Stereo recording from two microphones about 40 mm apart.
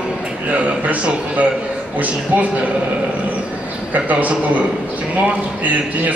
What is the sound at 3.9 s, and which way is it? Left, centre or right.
Speech, right.